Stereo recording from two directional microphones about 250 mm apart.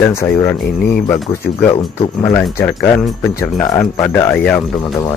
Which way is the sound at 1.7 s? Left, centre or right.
Centre.